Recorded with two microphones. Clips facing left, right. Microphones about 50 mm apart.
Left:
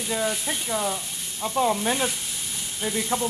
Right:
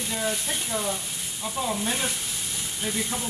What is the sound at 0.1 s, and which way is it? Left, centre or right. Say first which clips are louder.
Speech: left 3 dB; centre.